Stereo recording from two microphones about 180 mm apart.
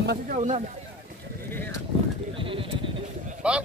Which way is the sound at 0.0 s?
65° right (ahead or behind).